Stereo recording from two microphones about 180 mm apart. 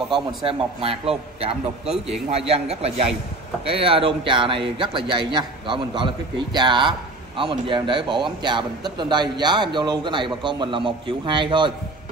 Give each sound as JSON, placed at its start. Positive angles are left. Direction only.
{"t": 0.5, "sound": "a man's voice", "side_deg": -30}
{"t": 1.9, "sound": "a man's voice", "side_deg": 0}
{"t": 2.3, "sound": "a man's voice", "side_deg": -35}